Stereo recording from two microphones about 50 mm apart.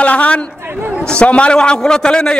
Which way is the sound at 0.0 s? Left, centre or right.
Left.